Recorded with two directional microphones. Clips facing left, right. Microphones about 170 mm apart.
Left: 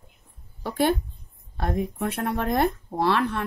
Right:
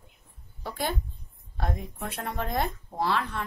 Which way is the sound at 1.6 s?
65° left (ahead or behind).